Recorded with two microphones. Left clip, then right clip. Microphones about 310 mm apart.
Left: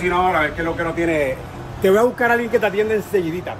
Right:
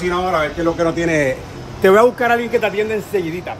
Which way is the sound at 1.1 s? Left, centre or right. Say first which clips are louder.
Right 3 dB; right.